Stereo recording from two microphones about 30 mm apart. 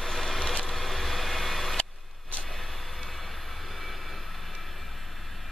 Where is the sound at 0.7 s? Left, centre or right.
Centre.